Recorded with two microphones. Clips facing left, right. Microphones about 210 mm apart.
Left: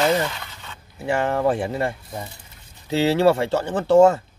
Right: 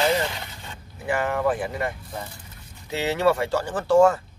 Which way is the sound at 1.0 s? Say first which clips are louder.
Left 3 dB; 30° left (ahead or behind).